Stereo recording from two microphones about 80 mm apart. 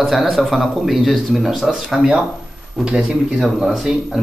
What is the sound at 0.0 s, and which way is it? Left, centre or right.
Speech, centre.